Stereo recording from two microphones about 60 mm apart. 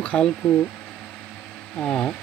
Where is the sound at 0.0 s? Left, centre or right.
Centre.